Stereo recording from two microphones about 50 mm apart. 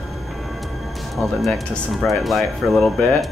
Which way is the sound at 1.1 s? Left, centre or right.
Centre.